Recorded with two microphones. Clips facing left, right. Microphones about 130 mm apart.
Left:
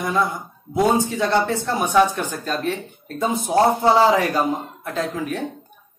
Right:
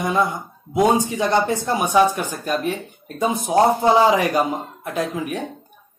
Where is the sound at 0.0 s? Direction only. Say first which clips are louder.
Right 1 dB; 20° right (ahead or behind).